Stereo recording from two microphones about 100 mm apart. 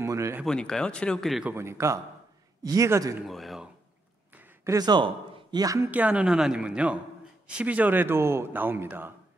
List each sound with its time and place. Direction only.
0.0 s a man's voice: 30° right (ahead or behind)
0.5 s speech: 5° left (ahead or behind)
1.4 s a man's voice: 25° right (ahead or behind)
3.3 s speech: centre (ahead or behind)
4.6 s speech: 40° right (ahead or behind)
5.9 s speech: 15° right (ahead or behind)